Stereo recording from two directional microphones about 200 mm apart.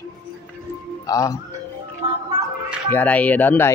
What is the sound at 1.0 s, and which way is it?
Speech, 15° left (ahead or behind).